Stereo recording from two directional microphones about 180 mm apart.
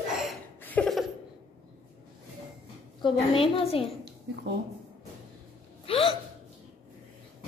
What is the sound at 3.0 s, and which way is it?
Speech, 30° left (ahead or behind).